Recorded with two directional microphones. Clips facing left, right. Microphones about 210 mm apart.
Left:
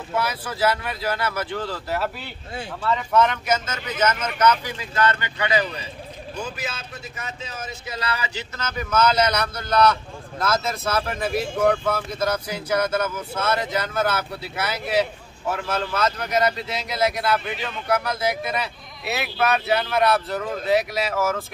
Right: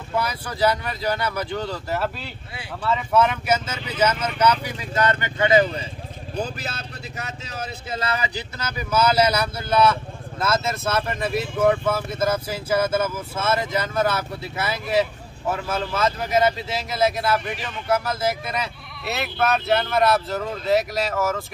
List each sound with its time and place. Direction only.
0.1 s speech: 5° left (ahead or behind)
5.0 s speech: 25° right (ahead or behind)
8.0 s speech: 20° right (ahead or behind)
8.5 s speech: 10° right (ahead or behind)